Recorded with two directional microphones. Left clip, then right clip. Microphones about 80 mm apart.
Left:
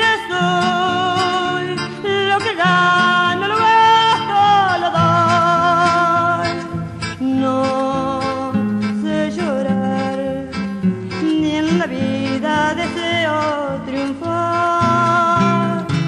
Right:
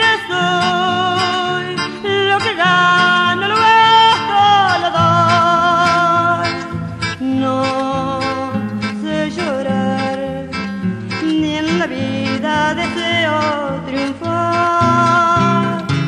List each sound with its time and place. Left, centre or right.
0.0 s music: right
9.1 s music: right
11.2 s music: right